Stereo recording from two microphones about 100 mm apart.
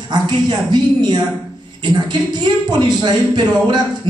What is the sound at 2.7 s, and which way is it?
A man's voice, 50° right (ahead or behind).